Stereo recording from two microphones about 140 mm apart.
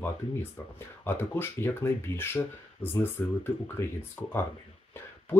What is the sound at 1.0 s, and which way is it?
Speech, 15° left (ahead or behind).